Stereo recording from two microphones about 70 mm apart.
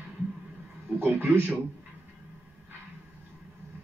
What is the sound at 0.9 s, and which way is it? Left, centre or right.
Speech, right.